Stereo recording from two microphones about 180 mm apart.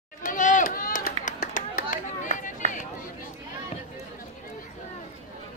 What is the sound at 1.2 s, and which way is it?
Chop, 50° left (ahead or behind).